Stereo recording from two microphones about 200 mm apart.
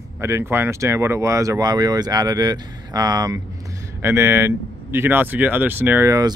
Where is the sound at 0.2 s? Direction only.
15° right (ahead or behind).